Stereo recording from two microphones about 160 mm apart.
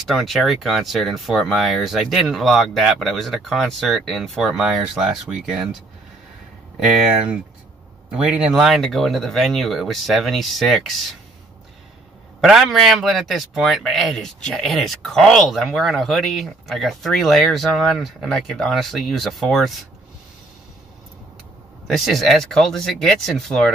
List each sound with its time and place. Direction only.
0.0 s a man's voice: centre (ahead or behind)
6.8 s a man's voice: centre (ahead or behind)
12.4 s a man's voice: centre (ahead or behind)
21.8 s a man's voice: centre (ahead or behind)